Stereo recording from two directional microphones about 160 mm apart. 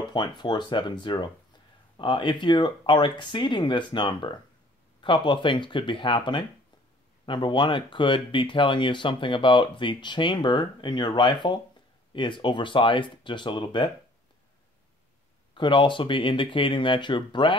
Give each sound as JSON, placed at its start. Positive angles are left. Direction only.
{"t": 0.1, "sound": "speech", "side_deg": 30}
{"t": 15.5, "sound": "speech", "side_deg": 30}